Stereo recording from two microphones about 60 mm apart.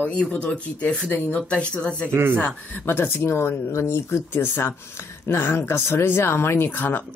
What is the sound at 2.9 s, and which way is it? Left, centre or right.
Speech, left.